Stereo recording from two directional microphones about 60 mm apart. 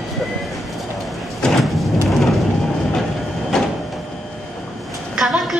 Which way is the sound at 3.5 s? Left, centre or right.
Centre.